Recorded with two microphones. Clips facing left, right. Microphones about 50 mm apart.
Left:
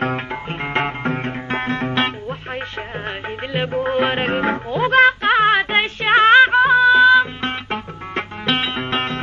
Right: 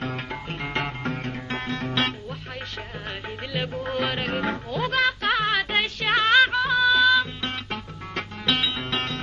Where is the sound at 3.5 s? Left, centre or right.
Left.